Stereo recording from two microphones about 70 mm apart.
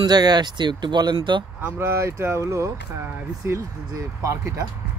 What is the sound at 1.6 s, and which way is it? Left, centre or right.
Speech, right.